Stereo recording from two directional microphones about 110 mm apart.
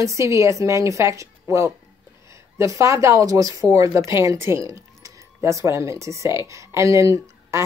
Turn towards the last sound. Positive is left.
turn(degrees=-25)  # may be behind; listen again after turning